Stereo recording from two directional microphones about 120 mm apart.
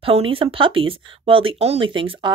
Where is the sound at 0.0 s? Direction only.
50° right (ahead or behind).